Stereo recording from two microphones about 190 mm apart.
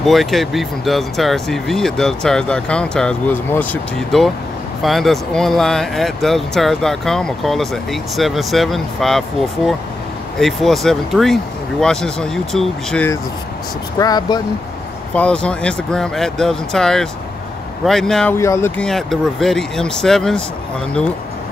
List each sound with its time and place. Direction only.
0.0 s speech: centre (ahead or behind)
13.9 s speech: 20° left (ahead or behind)
15.1 s speech: 5° left (ahead or behind)
18.9 s speech: centre (ahead or behind)